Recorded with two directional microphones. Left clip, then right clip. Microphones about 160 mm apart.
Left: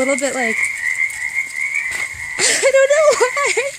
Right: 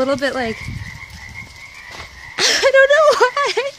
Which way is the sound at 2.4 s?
10° left (ahead or behind).